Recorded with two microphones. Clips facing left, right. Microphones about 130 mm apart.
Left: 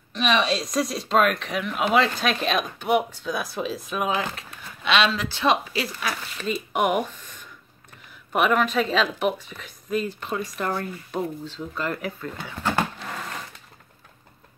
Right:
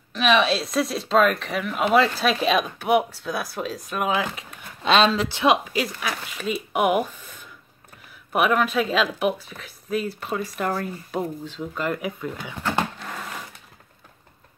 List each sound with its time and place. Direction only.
0.1 s speech: centre (ahead or behind)
4.8 s speech: 40° right (ahead or behind)
5.3 s speech: 10° right (ahead or behind)
13.2 s a sound: 5° right (ahead or behind)